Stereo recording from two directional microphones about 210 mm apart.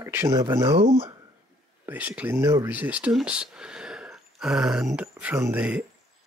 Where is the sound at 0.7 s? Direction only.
25° right (ahead or behind).